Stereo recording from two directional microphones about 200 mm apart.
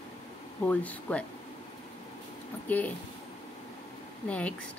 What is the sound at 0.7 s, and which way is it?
Speech, 5° left (ahead or behind).